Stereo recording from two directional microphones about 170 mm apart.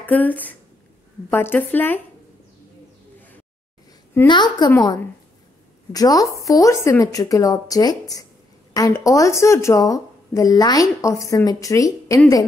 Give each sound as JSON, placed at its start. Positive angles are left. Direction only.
{"t": 0.0, "sound": "a woman's voice", "side_deg": 10}
{"t": 4.3, "sound": "a woman's voice", "side_deg": 25}